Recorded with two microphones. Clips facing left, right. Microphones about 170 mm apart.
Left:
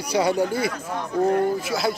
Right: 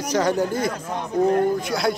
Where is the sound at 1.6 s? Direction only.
5° left (ahead or behind).